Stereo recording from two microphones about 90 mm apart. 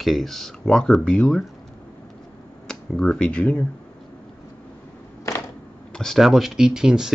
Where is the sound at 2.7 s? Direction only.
10° left (ahead or behind).